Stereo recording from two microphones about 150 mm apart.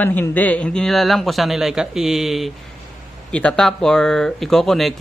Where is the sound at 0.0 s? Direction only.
10° left (ahead or behind).